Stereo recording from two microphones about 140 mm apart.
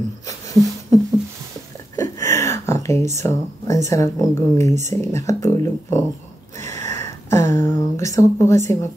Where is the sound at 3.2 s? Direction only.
20° left (ahead or behind).